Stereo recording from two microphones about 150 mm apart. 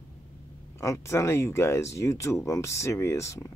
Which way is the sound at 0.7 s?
20° left (ahead or behind).